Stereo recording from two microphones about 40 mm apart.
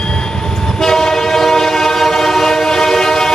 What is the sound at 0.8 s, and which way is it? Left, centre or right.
Train, centre.